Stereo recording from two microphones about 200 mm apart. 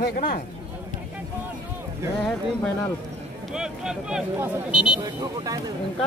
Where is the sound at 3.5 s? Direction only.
5° right (ahead or behind).